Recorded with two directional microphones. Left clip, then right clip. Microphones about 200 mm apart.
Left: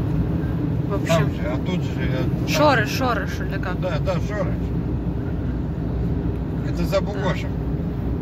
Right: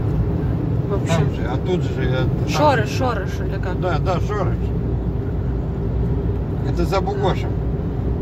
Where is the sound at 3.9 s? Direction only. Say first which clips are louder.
Right 5 dB; 50° right (ahead or behind).